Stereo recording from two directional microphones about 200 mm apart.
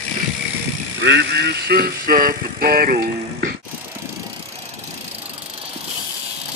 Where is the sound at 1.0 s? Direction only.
60° right (ahead or behind).